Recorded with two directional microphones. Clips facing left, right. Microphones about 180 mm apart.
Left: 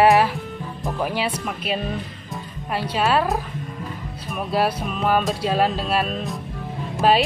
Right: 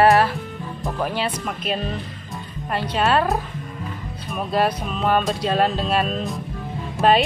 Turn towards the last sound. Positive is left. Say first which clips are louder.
# right 1 dB
turn(degrees=0)  # may be behind; listen again after turning